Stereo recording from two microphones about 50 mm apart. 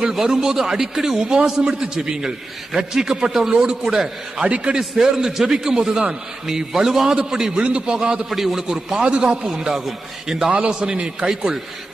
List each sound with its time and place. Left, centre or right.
0.1 s a man's voice: centre
8.3 s a man's voice: centre
9.0 s a man's voice: centre
10.7 s a man's voice: centre